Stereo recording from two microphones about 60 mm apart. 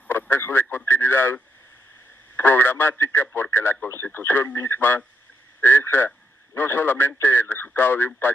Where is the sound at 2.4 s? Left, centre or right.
Left.